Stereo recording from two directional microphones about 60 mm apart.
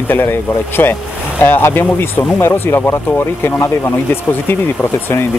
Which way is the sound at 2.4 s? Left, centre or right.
Left.